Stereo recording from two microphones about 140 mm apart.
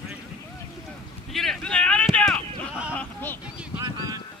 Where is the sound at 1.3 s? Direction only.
Centre (ahead or behind).